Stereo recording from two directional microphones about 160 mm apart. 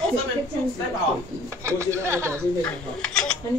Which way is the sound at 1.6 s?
15° right (ahead or behind).